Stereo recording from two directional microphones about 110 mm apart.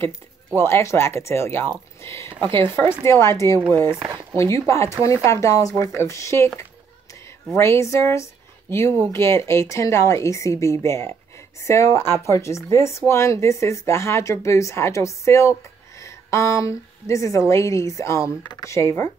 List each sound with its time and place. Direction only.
0.6 s a woman's voice: 25° left (ahead or behind)
18.4 s speech: 40° left (ahead or behind)
18.7 s speech: 25° left (ahead or behind)